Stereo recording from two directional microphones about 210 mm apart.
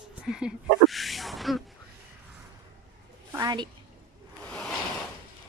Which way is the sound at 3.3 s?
20° right (ahead or behind).